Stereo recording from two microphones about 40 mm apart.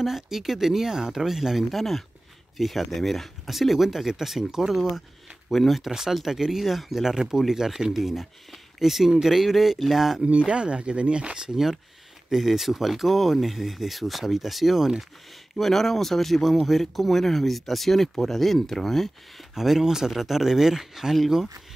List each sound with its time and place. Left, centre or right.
0.0 s speech: centre
1.7 s speech: centre
5.9 s speech: centre
10.2 s speech: right
11.5 s speech: centre
15.5 s speech: centre
19.5 s speech: centre